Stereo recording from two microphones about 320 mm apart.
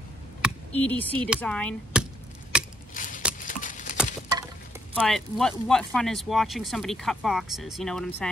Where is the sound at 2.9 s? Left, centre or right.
Left.